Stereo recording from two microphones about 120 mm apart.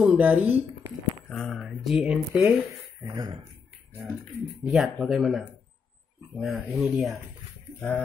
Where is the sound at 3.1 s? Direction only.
35° right (ahead or behind).